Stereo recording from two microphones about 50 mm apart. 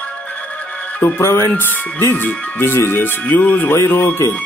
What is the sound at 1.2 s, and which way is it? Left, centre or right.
Speech, left.